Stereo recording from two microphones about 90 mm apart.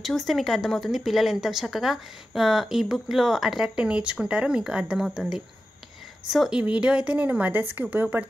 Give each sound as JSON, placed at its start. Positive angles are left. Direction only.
{"t": 0.0, "sound": "speech", "side_deg": 0}
{"t": 6.2, "sound": "speech", "side_deg": -5}
{"t": 6.6, "sound": "a woman's voice", "side_deg": -15}